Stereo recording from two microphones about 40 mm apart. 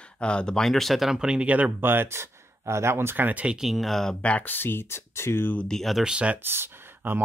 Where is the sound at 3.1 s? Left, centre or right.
Right.